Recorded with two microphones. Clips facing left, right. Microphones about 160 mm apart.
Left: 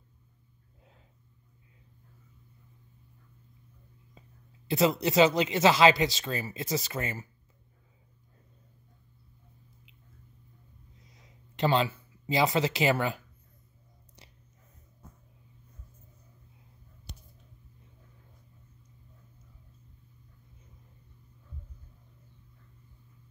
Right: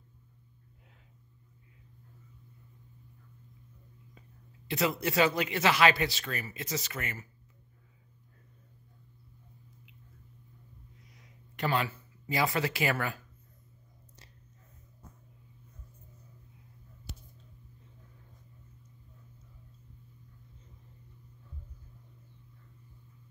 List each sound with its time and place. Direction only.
4.6 s speech: 25° left (ahead or behind)
11.1 s speech: 25° left (ahead or behind)